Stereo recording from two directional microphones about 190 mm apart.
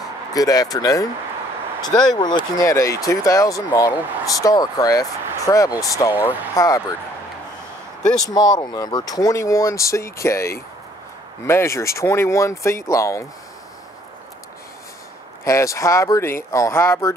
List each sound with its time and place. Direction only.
0.3 s speech: 20° left (ahead or behind)
8.3 s speech: 20° left (ahead or behind)
15.4 s speech: 15° left (ahead or behind)